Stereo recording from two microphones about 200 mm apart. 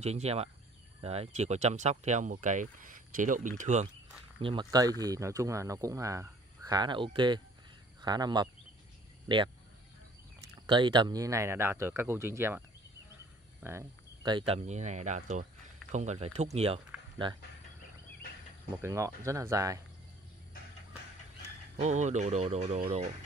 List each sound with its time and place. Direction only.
0.0 s speech: 35° right (ahead or behind)
4.4 s speech: 25° right (ahead or behind)
10.7 s speech: 20° right (ahead or behind)
18.8 s speech: 15° right (ahead or behind)
21.7 s speech: 35° right (ahead or behind)